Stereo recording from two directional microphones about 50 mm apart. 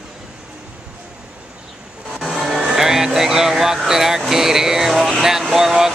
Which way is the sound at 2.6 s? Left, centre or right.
Centre.